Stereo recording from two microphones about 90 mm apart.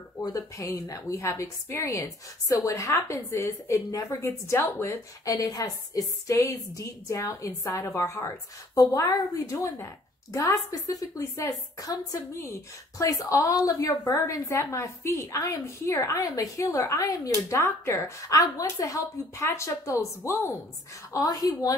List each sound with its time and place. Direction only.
0.2 s a woman's voice: 40° left (ahead or behind)
5.2 s a woman's voice: 40° left (ahead or behind)
21.1 s a woman's voice: 45° left (ahead or behind)